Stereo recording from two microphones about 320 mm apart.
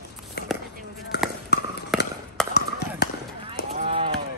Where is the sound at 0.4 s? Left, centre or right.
Left.